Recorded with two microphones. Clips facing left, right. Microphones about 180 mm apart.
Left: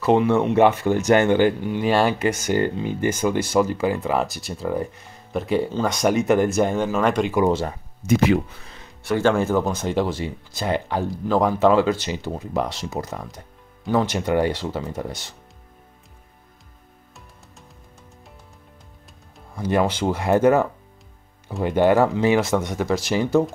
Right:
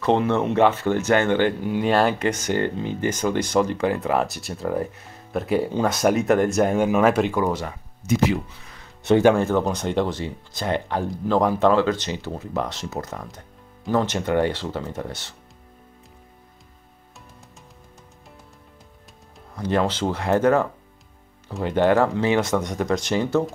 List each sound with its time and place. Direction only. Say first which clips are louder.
0.0 s speech: left 2 dB; 10° left (ahead or behind)
1.6 s speech: even; centre (ahead or behind)
7.4 s speech: left 4 dB; 30° left (ahead or behind)
8.1 s speech: left 3 dB; 60° left (ahead or behind)
9.3 s speech: even; 5° left (ahead or behind)
19.5 s speech: left 1 dB; 10° left (ahead or behind)
21.6 s speech: left 1 dB; 10° left (ahead or behind)